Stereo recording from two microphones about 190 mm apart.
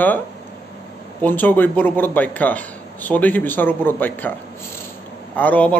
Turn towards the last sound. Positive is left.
turn(degrees=10)  # may be behind; listen again after turning